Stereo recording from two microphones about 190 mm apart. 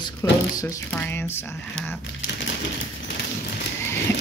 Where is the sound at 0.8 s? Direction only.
10° left (ahead or behind).